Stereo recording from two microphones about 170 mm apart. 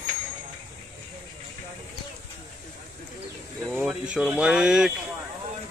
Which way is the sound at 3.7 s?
5° right (ahead or behind).